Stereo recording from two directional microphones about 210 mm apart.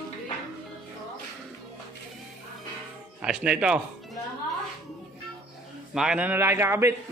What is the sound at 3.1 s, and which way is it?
Speech, 5° right (ahead or behind).